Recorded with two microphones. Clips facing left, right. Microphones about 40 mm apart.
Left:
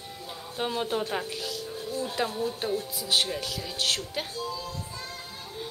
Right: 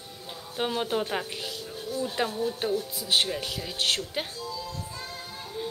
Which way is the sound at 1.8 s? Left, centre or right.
Left.